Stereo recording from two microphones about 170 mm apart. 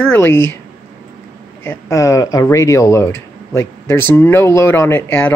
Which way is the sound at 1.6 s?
15° left (ahead or behind).